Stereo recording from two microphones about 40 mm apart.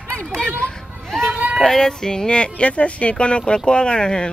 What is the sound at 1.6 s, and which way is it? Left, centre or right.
Speech, centre.